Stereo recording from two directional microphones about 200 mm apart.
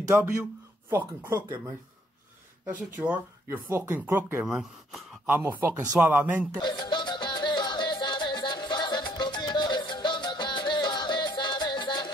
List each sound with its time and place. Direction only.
0.0 s speech: 10° right (ahead or behind)
2.6 s speech: 5° right (ahead or behind)
6.6 s music: 20° left (ahead or behind)